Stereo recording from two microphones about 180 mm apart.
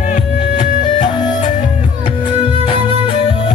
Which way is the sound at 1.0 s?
20° left (ahead or behind).